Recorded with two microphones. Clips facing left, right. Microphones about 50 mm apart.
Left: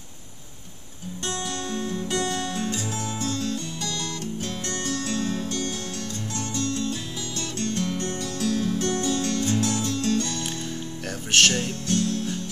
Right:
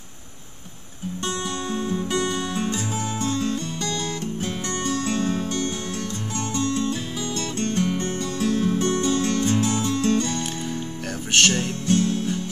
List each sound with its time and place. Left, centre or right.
1.7 s music: centre
11.3 s music: centre
11.9 s music: right